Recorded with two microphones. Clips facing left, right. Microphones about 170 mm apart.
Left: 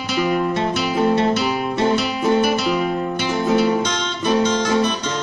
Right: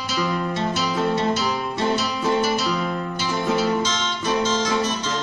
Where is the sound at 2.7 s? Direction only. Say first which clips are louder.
Left 5 dB; 60° left (ahead or behind).